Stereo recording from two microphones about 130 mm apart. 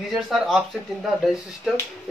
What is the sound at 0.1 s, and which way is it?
Speech, centre (ahead or behind).